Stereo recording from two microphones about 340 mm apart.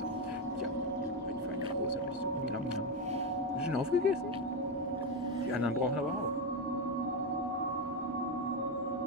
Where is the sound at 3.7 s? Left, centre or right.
Centre.